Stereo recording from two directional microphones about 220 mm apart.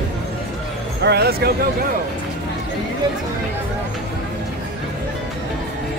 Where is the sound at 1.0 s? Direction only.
45° right (ahead or behind).